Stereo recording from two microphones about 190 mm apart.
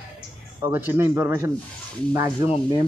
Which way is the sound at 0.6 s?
10° right (ahead or behind).